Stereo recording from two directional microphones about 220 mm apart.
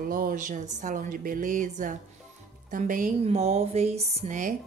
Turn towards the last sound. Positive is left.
turn(degrees=-35)  # may be behind; listen again after turning